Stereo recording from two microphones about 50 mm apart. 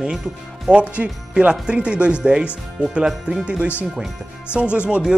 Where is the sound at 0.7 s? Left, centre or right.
Right.